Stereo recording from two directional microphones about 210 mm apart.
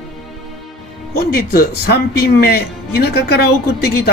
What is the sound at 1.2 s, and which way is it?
Speech, 50° left (ahead or behind).